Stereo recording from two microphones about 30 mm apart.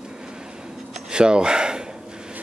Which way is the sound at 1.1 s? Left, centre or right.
Right.